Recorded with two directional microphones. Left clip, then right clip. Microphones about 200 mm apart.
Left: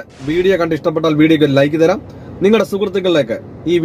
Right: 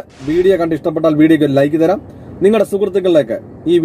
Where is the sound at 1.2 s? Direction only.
15° left (ahead or behind).